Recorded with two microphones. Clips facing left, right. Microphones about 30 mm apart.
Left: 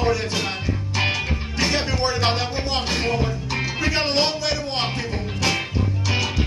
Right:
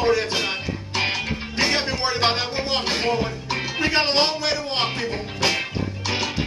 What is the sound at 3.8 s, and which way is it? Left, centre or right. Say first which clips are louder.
Music: right 2 dB; right.